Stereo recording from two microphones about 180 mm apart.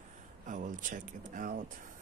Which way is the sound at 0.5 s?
45° right (ahead or behind).